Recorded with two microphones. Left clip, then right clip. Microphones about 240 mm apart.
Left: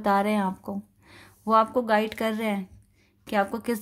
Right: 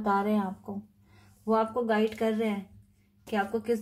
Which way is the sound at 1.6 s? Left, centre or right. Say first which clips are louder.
Left 2 dB; left.